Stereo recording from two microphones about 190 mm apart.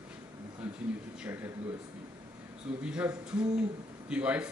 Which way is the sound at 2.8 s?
5° right (ahead or behind).